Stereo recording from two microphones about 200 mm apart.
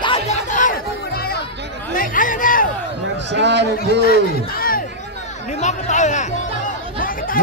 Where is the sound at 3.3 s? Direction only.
60° right (ahead or behind).